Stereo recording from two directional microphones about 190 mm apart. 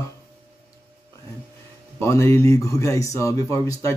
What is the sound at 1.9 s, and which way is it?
A man's voice, 15° left (ahead or behind).